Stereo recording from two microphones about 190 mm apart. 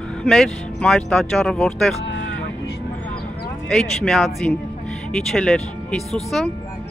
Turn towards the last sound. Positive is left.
turn(degrees=0)  # may be behind; listen again after turning